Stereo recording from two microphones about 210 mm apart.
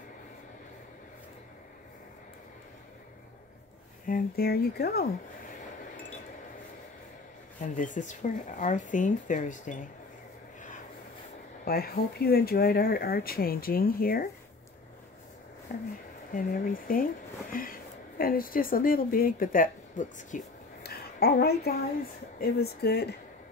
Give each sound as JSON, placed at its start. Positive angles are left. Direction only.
{"t": 4.1, "sound": "speech", "side_deg": 45}
{"t": 7.6, "sound": "speech", "side_deg": 35}
{"t": 11.6, "sound": "speech", "side_deg": 45}
{"t": 15.7, "sound": "speech", "side_deg": 40}